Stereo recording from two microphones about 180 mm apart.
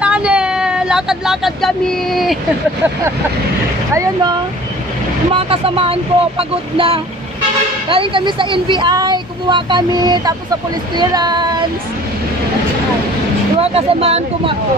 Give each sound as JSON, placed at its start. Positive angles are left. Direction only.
{"t": 0.0, "sound": "a sound", "side_deg": -5}
{"t": 3.9, "sound": "speech", "side_deg": -20}
{"t": 5.3, "sound": "speech", "side_deg": -30}
{"t": 13.6, "sound": "speech", "side_deg": -35}